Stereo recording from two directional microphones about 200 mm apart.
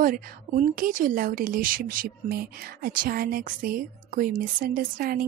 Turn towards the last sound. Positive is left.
turn(degrees=-50)  # may be behind; listen again after turning